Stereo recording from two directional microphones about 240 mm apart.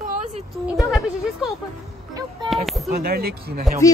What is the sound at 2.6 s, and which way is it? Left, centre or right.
Speech, centre.